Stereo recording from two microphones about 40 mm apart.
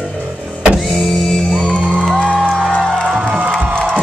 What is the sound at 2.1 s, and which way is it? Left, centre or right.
Music, left.